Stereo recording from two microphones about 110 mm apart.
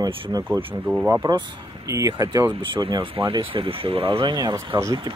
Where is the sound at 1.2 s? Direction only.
50° right (ahead or behind).